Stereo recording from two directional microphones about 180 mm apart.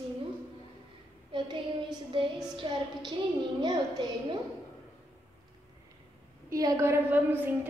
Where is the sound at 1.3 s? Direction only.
25° right (ahead or behind).